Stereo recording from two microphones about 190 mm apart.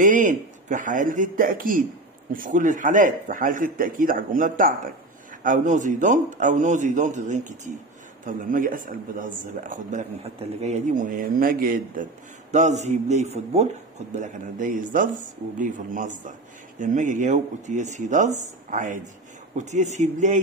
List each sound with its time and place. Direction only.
0.0 s a man's voice: 45° right (ahead or behind)